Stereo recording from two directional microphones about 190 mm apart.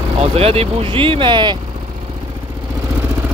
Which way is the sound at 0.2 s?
30° right (ahead or behind).